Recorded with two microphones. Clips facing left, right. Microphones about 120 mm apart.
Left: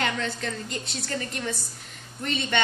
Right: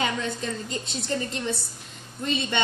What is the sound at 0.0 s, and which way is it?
Speech, 10° right (ahead or behind).